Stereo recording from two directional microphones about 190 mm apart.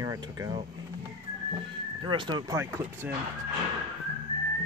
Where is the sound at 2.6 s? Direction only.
15° right (ahead or behind).